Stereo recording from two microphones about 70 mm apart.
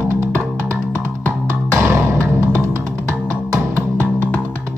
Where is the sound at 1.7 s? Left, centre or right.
Right.